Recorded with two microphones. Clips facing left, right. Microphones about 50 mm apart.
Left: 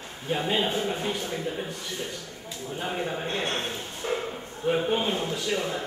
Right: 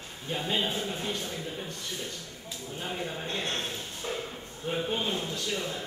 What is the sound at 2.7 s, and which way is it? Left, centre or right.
Speech, left.